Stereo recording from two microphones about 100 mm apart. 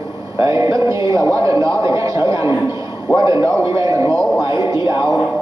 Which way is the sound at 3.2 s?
35° right (ahead or behind).